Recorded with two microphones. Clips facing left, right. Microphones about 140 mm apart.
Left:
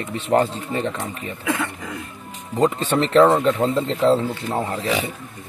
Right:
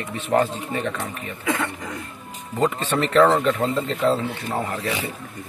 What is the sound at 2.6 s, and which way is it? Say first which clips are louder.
Speech: left 3 dB; 30° left (ahead or behind).